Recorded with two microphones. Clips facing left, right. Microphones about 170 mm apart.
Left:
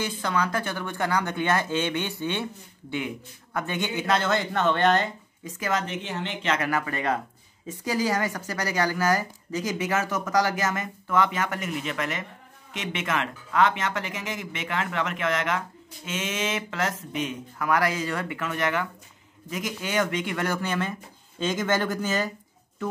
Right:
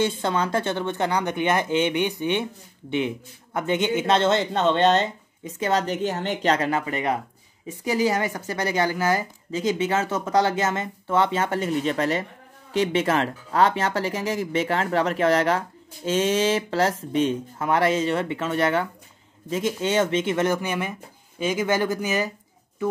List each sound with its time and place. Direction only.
0.0 s speech: 25° right (ahead or behind)
3.5 s speech: 20° right (ahead or behind)
6.7 s speech: 20° right (ahead or behind)